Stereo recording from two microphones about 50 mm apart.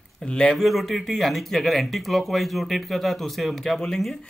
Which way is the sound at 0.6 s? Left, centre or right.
Centre.